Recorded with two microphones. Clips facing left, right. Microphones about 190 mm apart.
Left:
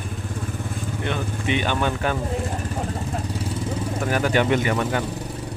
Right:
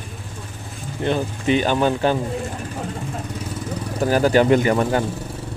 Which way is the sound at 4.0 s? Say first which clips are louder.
Right 6 dB; 35° right (ahead or behind).